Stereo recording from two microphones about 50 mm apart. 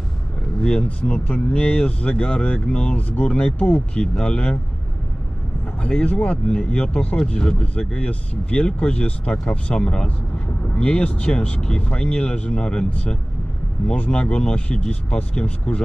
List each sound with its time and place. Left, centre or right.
0.6 s a sound: centre
0.8 s speech: left
5.8 s speech: left